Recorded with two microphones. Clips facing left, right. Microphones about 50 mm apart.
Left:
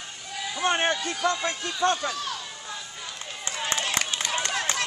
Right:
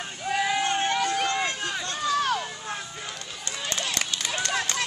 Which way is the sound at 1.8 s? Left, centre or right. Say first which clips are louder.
Left 7 dB; left.